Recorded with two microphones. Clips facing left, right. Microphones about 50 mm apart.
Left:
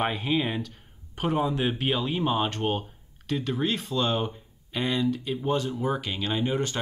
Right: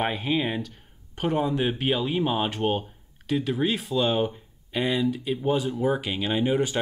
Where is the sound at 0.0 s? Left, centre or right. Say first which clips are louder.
Right 1 dB; centre.